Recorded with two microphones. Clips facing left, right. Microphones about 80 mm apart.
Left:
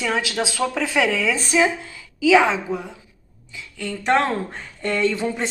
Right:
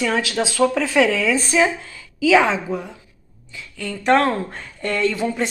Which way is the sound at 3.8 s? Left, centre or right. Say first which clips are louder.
Right 3 dB; centre.